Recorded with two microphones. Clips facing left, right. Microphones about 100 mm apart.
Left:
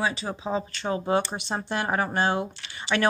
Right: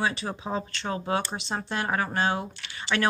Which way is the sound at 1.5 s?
20° left (ahead or behind).